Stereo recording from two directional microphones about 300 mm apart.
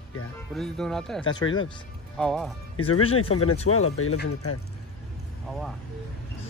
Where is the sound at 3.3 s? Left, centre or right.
Left.